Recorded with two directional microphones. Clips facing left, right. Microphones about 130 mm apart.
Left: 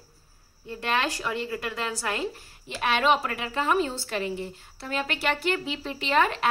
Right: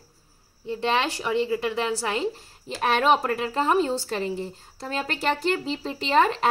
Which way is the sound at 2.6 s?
40° right (ahead or behind).